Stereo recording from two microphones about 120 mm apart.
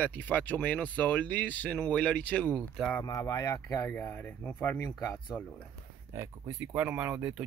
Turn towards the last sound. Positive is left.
turn(degrees=-10)  # may be behind; listen again after turning